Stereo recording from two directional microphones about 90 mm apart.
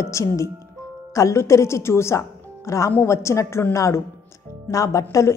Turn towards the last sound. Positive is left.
turn(degrees=40)  # may be behind; listen again after turning